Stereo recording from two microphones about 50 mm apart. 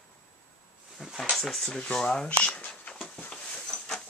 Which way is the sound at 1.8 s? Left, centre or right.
Centre.